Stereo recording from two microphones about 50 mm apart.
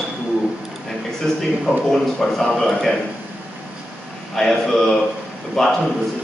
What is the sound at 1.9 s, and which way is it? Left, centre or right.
Speech, centre.